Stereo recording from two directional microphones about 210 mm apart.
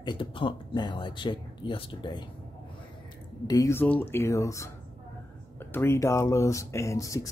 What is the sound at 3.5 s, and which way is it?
Speech, 15° left (ahead or behind).